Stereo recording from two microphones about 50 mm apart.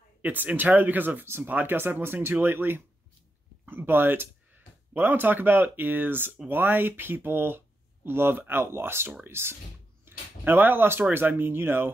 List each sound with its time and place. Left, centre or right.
0.2 s speech: right